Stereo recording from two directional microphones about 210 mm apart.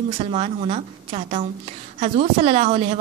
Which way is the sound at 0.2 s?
30° right (ahead or behind).